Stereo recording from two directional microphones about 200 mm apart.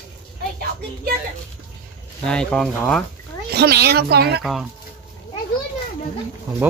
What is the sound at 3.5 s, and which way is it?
Speech, 50° right (ahead or behind).